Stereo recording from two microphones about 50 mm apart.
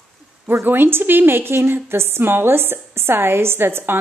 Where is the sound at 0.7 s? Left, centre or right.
Right.